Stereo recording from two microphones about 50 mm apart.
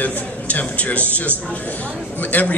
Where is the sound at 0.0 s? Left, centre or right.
Left.